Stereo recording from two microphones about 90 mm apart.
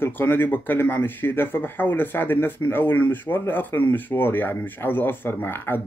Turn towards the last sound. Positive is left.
turn(degrees=25)  # may be behind; listen again after turning